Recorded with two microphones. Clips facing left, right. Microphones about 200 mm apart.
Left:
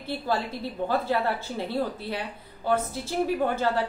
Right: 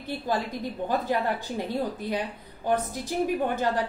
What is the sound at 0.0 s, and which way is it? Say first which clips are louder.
A woman's voice: even; 15° right (ahead or behind).